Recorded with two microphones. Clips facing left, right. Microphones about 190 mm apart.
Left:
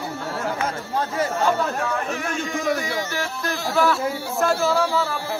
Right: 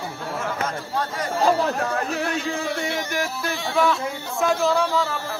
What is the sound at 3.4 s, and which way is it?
Speech, centre (ahead or behind).